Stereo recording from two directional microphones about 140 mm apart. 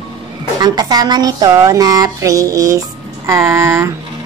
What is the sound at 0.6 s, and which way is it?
Speech, 30° right (ahead or behind).